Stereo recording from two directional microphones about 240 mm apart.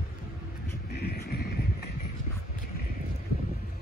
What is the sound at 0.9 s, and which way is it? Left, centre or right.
Vehicle, left.